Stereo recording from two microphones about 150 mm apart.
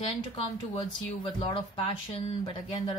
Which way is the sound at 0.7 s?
35° left (ahead or behind).